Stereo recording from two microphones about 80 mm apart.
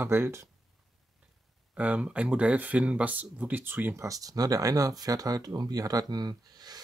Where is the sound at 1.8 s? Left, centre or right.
Centre.